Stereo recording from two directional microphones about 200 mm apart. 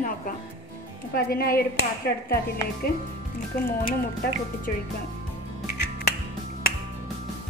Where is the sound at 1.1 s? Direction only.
50° left (ahead or behind).